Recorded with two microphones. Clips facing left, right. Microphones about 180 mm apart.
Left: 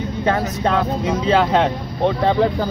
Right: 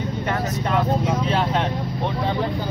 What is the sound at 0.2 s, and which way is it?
Speech, 90° left.